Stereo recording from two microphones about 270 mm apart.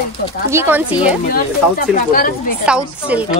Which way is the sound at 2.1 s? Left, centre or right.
Left.